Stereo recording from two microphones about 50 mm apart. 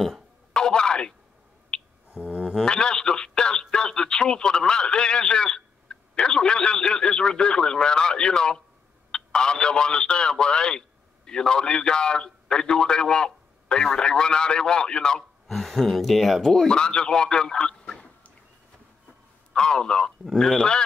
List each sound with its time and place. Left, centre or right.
0.0 s a sound: centre
0.6 s a sound: centre
1.7 s finger snapping: centre
2.1 s music: centre
2.6 s a man's voice: centre
15.4 s speech: centre
16.7 s a man's voice: centre
19.5 s speech: centre